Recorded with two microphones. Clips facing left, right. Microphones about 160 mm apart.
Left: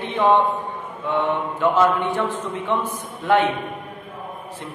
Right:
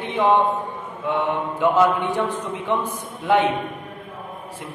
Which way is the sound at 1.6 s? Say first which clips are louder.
Right 1 dB; 15° right (ahead or behind).